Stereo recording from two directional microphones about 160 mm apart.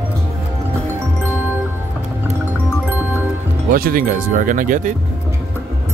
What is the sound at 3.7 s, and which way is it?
Speech, 65° right (ahead or behind).